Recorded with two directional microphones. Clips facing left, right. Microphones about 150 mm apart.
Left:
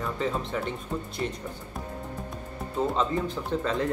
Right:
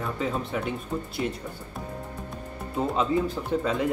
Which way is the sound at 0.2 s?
5° right (ahead or behind).